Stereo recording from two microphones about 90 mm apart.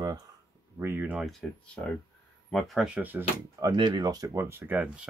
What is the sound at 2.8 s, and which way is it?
Speech, 15° right (ahead or behind).